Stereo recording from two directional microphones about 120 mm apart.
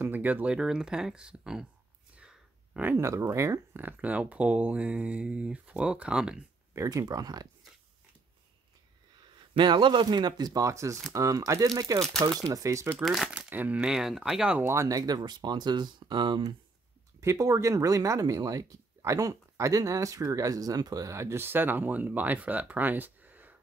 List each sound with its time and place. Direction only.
0.0 s speech: 15° right (ahead or behind)
6.7 s speech: 25° right (ahead or behind)
9.5 s speech: 40° right (ahead or behind); by 12.9 s 25° right (ahead or behind)
13.0 s speech: centre (ahead or behind)
14.6 s speech: 25° right (ahead or behind); by 16.5 s 40° right (ahead or behind)
17.2 s speech: 25° right (ahead or behind)